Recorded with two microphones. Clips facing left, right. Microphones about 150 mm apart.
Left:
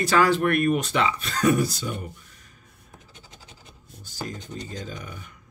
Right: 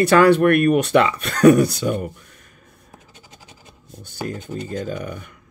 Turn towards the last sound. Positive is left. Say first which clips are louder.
# right 9 dB
turn(degrees=-55)  # may be behind; listen again after turning